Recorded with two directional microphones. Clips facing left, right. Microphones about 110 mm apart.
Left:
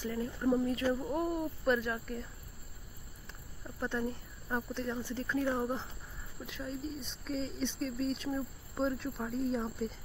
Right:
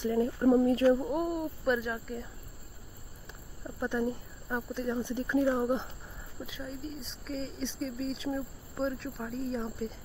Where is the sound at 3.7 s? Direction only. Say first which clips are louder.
Right 4 dB; 15° right (ahead or behind).